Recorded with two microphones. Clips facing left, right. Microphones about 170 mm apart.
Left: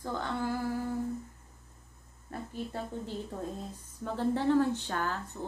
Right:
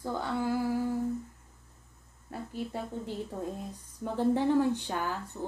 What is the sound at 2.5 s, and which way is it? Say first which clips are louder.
A woman's voice: right 2 dB; 10° right (ahead or behind).